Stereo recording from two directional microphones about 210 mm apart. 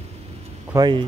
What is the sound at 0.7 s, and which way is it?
Speech, 20° right (ahead or behind).